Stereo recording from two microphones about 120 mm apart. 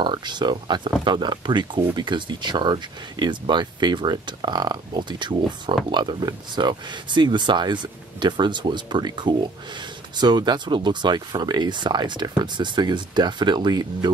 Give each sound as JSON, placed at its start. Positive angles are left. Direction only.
{"t": 0.0, "sound": "speech", "side_deg": -40}